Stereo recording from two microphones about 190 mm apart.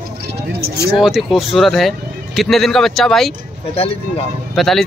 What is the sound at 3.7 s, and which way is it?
Speech, 30° left (ahead or behind).